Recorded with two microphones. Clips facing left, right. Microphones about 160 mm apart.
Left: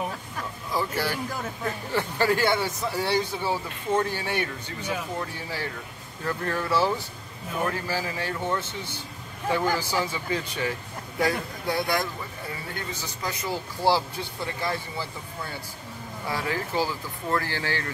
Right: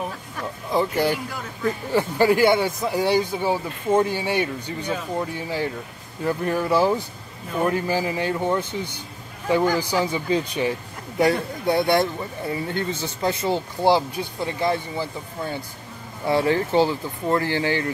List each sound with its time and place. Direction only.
0.7 s speech: 20° right (ahead or behind)